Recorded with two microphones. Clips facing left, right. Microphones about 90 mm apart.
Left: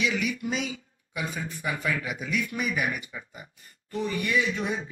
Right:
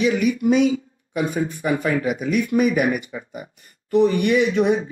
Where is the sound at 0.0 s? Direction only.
45° right (ahead or behind).